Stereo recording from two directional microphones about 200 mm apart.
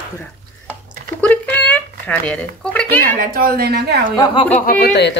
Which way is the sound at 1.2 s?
10° left (ahead or behind).